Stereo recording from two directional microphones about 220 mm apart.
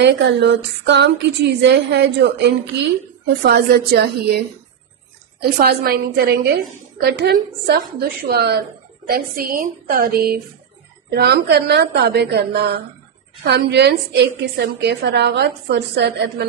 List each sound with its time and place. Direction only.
0.0 s a woman's voice: 50° right (ahead or behind)
5.6 s a woman's voice: 45° right (ahead or behind)